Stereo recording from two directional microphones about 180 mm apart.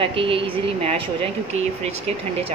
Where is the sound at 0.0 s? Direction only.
30° right (ahead or behind).